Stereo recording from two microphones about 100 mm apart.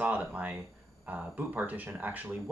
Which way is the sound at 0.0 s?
15° right (ahead or behind).